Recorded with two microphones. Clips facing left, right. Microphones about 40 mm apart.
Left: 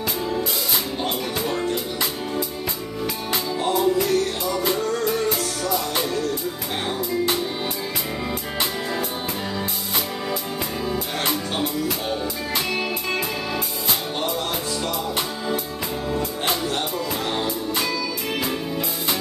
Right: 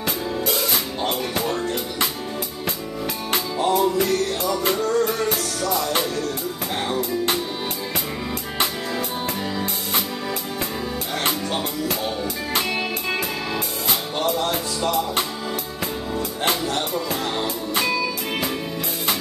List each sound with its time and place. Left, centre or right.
3.3 s music: right
6.9 s music: right